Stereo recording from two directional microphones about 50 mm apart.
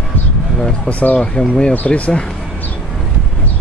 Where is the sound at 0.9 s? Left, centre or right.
Left.